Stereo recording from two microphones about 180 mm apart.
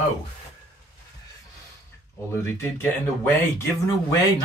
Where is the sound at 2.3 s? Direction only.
15° left (ahead or behind).